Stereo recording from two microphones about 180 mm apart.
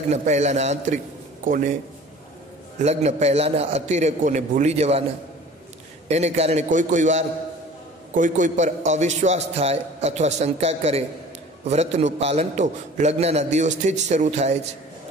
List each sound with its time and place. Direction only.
0.1 s a man's voice: 40° right (ahead or behind)
2.8 s a man's voice: 35° right (ahead or behind)
6.0 s a man's voice: 40° right (ahead or behind)